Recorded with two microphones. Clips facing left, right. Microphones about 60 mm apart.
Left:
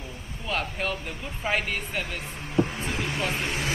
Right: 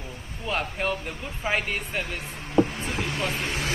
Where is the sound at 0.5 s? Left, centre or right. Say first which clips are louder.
Right 2 dB; centre.